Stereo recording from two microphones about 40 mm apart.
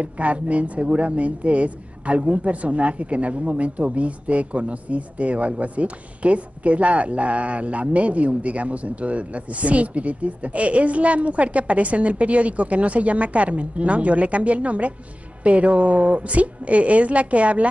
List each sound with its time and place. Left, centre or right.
0.0 s speech: right